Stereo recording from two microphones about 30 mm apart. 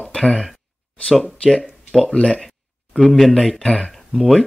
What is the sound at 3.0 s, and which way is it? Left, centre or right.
Speech, centre.